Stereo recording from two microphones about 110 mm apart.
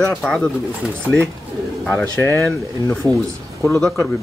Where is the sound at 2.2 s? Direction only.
20° left (ahead or behind).